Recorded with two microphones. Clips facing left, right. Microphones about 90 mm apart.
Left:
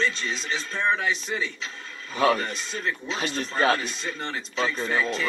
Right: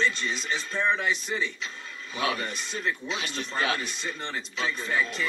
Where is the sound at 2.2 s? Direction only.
45° left (ahead or behind).